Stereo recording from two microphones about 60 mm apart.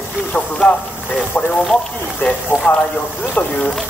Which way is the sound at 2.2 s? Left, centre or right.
Left.